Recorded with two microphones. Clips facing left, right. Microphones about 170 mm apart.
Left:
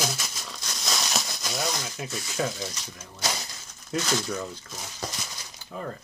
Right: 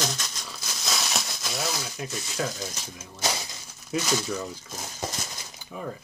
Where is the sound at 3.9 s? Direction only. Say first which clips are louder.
Right 1 dB; 10° right (ahead or behind).